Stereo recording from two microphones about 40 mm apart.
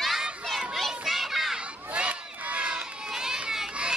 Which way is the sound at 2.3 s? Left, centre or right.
Right.